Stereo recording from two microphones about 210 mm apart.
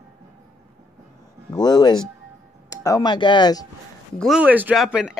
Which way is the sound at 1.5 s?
20° left (ahead or behind).